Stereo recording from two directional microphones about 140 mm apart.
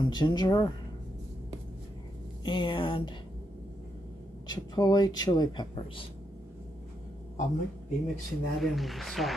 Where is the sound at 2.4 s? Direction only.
35° left (ahead or behind).